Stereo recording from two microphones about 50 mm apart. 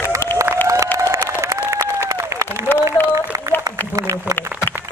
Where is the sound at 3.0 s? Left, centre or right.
Left.